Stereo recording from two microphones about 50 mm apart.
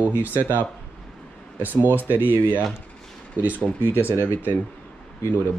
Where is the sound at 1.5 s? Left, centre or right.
Right.